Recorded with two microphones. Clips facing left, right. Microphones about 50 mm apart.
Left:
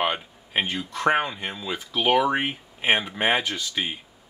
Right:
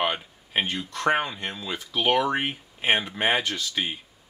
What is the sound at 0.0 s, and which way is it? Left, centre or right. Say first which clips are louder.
Speech: left 1 dB; centre.